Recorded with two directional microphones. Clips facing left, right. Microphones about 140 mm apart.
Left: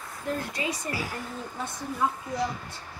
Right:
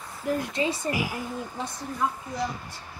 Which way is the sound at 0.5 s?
30° right (ahead or behind).